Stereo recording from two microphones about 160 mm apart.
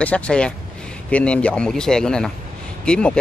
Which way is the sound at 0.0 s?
5° left (ahead or behind).